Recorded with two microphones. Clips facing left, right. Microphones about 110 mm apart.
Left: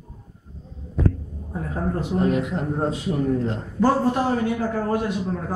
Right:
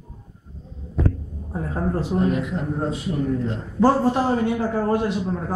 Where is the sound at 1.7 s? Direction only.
30° right (ahead or behind).